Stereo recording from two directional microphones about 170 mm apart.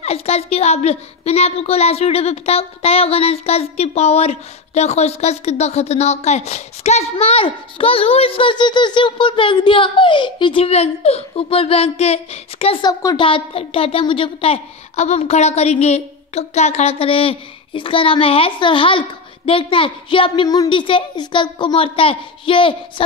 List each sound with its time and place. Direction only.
0.0 s a woman's voice: 40° left (ahead or behind)